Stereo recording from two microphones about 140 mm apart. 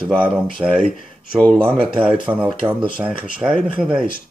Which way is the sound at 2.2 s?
10° right (ahead or behind).